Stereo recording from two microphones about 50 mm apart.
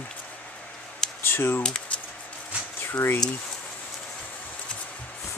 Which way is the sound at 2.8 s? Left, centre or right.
Left.